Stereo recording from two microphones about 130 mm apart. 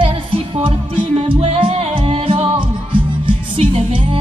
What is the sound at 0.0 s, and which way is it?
Music, 40° right (ahead or behind).